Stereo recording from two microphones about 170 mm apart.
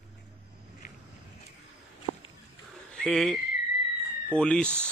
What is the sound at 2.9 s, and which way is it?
Speech, 5° left (ahead or behind).